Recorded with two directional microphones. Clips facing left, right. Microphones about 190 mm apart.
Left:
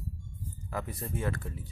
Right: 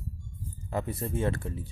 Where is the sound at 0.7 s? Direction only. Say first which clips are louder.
Right 5 dB; 25° right (ahead or behind).